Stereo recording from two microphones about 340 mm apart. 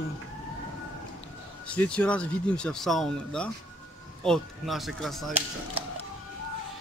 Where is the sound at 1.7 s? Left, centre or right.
Centre.